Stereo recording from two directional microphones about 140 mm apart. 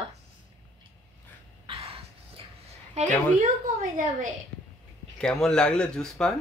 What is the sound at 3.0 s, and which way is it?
Speech, 55° right (ahead or behind).